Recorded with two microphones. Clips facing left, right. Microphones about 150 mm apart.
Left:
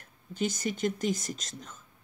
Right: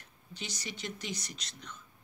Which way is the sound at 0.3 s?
50° left (ahead or behind).